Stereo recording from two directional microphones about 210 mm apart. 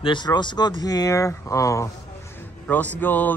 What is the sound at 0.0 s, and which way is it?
Speech, 20° left (ahead or behind).